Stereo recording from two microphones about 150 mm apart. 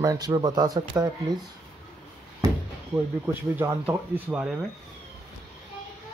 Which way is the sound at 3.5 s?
10° right (ahead or behind).